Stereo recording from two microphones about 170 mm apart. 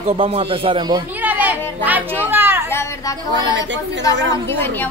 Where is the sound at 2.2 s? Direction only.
15° right (ahead or behind).